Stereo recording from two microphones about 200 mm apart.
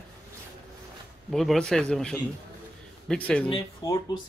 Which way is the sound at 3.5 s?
20° left (ahead or behind).